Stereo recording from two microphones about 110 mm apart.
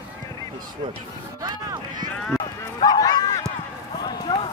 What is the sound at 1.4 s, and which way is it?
Speech, 40° right (ahead or behind).